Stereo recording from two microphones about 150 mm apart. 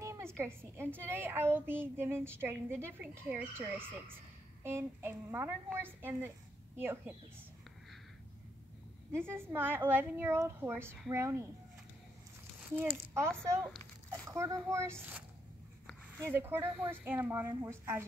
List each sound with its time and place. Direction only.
0.0 s a sound: 20° right (ahead or behind)
0.4 s a woman's voice: 15° right (ahead or behind)
9.1 s a woman's voice: 15° right (ahead or behind)
12.7 s a woman's voice: 10° right (ahead or behind)
14.1 s a child's voice: 20° right (ahead or behind)